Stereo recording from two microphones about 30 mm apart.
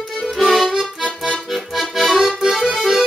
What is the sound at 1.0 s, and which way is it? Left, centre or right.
Accordion, centre.